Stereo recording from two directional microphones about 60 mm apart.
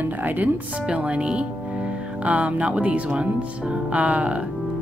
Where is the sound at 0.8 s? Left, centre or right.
Centre.